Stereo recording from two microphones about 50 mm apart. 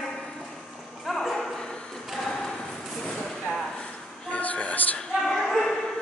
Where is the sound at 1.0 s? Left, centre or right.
Centre.